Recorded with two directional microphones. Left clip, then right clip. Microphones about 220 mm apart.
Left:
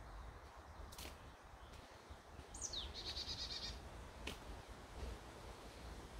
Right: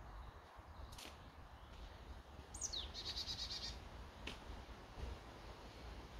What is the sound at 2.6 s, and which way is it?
Goat, 50° right (ahead or behind).